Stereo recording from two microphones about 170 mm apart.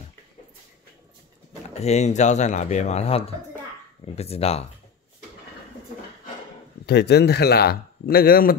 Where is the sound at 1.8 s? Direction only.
40° left (ahead or behind).